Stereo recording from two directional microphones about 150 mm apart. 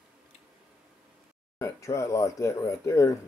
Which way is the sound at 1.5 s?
20° left (ahead or behind).